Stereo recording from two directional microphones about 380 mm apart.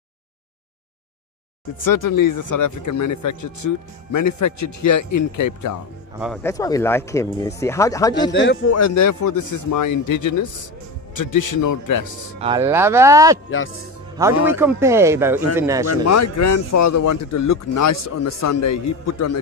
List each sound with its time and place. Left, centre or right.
1.8 s a man's voice: left
6.1 s speech: centre
8.3 s a man's voice: left
8.7 s a man's voice: left
12.4 s a man's voice: centre
15.9 s a man's voice: left